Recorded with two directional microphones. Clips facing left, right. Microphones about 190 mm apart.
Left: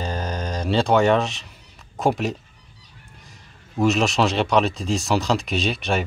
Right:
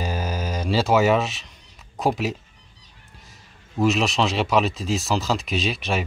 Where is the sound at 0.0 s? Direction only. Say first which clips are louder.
Even; 5° right (ahead or behind).